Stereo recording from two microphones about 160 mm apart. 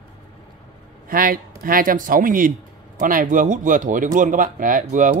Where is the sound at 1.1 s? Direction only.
65° right (ahead or behind).